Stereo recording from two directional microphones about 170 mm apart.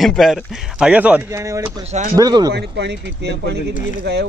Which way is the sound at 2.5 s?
80° right.